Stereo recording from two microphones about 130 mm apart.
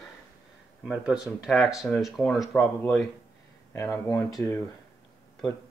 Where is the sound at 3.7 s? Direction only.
20° left (ahead or behind).